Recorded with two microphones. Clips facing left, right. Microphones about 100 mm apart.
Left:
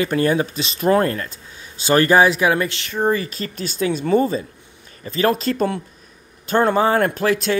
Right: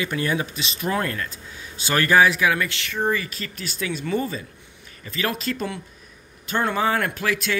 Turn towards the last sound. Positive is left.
turn(degrees=35)  # may be behind; listen again after turning